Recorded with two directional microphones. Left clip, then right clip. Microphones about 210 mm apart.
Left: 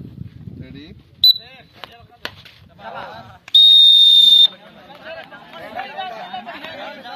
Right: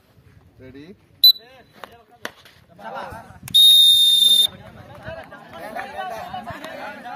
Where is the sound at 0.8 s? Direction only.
50° right (ahead or behind).